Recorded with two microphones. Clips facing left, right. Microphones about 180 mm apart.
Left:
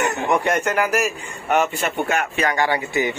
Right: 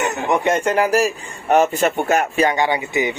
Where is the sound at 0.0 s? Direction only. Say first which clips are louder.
Right 1 dB; 20° right (ahead or behind); by 2.5 s 35° right (ahead or behind).